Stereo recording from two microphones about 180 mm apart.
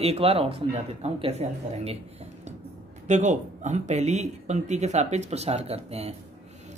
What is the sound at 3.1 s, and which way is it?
Speech, 40° right (ahead or behind).